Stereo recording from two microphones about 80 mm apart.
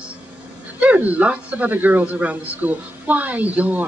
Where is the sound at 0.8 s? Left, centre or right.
Centre.